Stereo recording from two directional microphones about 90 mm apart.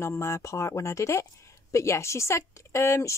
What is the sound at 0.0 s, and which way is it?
Speech, 30° left (ahead or behind).